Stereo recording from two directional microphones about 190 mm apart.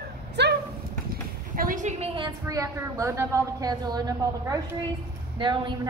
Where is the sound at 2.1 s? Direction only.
20° right (ahead or behind).